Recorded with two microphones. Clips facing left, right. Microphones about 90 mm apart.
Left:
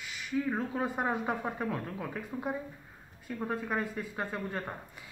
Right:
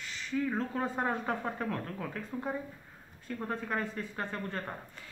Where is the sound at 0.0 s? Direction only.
10° left (ahead or behind).